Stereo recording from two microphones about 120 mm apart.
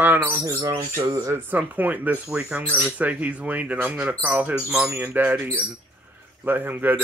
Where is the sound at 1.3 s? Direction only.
15° right (ahead or behind).